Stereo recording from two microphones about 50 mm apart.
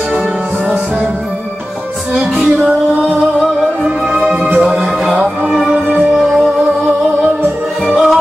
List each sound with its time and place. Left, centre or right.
2.1 s music: centre
4.2 s music: right
5.0 s music: centre
7.8 s music: centre